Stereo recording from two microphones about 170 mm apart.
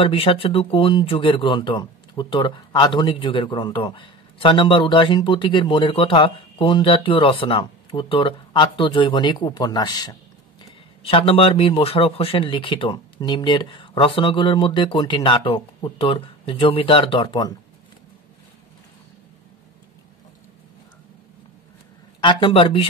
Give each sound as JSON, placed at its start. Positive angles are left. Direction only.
{"t": 0.0, "sound": "speech", "side_deg": 35}
{"t": 22.2, "sound": "speech", "side_deg": 30}